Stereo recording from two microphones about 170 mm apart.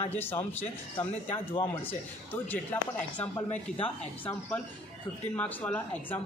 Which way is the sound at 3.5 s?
35° left (ahead or behind).